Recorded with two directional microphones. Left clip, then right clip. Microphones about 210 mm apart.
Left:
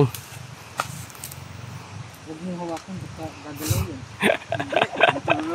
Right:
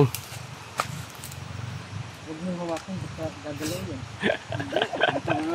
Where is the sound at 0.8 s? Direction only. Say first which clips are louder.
Left 1 dB; 10° right (ahead or behind).